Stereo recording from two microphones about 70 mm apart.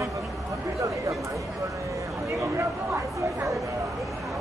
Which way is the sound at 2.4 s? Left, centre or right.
Right.